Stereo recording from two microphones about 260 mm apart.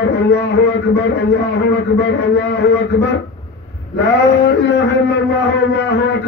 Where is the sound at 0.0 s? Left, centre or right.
Left.